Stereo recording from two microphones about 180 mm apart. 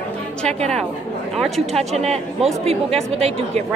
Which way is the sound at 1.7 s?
35° right (ahead or behind).